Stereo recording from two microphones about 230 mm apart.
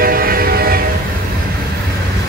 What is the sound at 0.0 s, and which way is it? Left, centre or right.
Train, right.